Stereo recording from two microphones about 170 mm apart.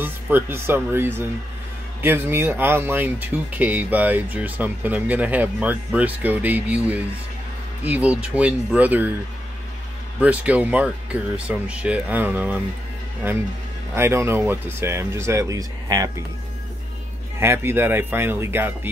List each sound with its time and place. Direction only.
0.0 s speech: 15° right (ahead or behind)
10.2 s speech: 10° right (ahead or behind)
13.9 s speech: 15° right (ahead or behind)
17.4 s speech: 15° right (ahead or behind)